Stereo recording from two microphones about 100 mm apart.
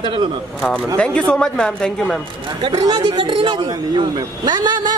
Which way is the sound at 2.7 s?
40° right (ahead or behind).